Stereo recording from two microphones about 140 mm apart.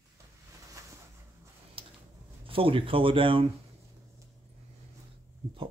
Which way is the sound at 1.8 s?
40° right (ahead or behind).